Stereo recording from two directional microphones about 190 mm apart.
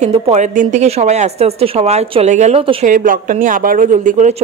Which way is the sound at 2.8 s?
45° right (ahead or behind).